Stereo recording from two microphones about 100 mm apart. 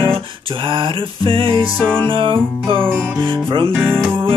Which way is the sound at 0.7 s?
60° right (ahead or behind).